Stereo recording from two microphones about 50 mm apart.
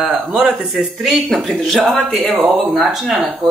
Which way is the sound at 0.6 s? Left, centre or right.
Centre.